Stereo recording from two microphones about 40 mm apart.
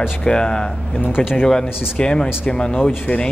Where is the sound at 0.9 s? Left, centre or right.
Left.